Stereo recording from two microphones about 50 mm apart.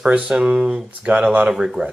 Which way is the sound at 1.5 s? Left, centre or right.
Centre.